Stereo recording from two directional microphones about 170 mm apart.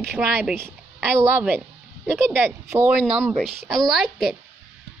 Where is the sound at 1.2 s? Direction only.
15° right (ahead or behind).